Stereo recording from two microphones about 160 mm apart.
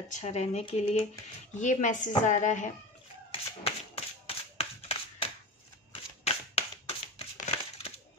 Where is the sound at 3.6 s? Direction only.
40° left (ahead or behind).